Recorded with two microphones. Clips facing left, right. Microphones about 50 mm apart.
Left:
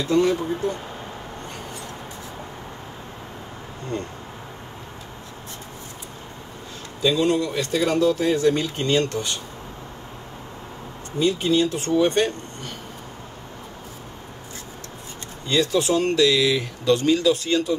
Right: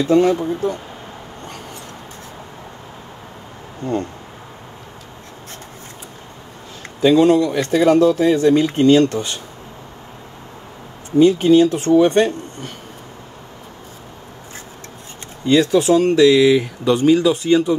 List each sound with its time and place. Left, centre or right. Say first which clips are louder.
0.1 s speech: right 5 dB; right
7.0 s speech: right 8 dB; right
11.1 s speech: right 9 dB; right
15.4 s speech: right 7 dB; right